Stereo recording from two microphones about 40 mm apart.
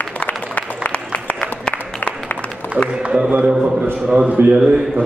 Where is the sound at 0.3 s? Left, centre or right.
Left.